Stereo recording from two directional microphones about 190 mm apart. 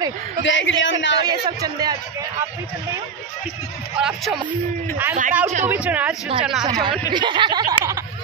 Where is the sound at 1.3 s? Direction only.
20° right (ahead or behind).